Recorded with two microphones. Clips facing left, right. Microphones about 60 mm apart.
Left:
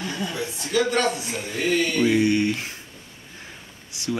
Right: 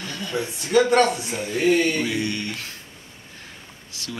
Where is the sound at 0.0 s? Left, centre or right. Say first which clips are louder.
Even; centre.